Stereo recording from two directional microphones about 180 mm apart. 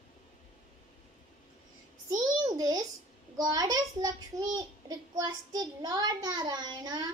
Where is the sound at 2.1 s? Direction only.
20° right (ahead or behind).